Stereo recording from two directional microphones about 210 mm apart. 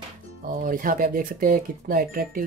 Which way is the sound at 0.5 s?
40° right (ahead or behind).